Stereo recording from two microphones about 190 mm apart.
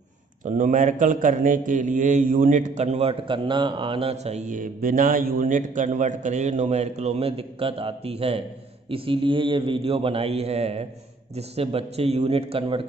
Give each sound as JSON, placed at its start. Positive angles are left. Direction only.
{"t": 0.5, "sound": "a man's voice", "side_deg": -40}